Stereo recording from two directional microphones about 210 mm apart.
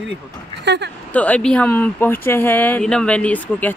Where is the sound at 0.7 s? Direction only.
55° right (ahead or behind).